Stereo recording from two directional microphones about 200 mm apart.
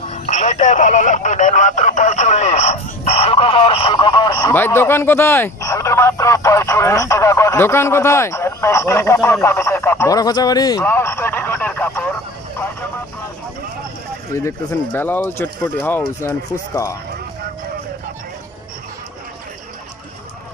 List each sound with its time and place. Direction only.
0.1 s telephone: 35° left (ahead or behind); by 4.6 s 20° left (ahead or behind)
4.6 s speech: 10° left (ahead or behind)
14.3 s speech: 15° left (ahead or behind)